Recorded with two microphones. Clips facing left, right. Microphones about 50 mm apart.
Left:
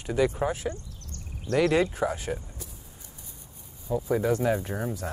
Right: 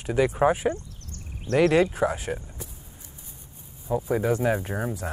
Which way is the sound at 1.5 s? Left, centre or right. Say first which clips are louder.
Right 3 dB; centre.